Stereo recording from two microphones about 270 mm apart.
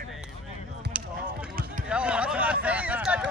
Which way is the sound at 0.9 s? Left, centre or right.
Centre.